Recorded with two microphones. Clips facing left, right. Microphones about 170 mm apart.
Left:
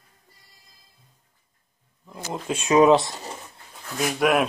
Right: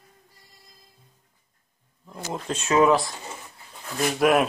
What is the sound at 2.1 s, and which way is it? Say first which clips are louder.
Speech: left 1 dB; 5° left (ahead or behind).